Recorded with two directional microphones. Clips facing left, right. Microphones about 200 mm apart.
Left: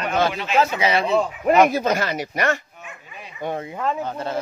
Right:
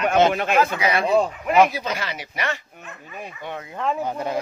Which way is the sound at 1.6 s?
45° left (ahead or behind).